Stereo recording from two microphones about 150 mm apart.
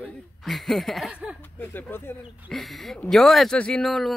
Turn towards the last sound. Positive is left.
turn(degrees=0)  # may be behind; listen again after turning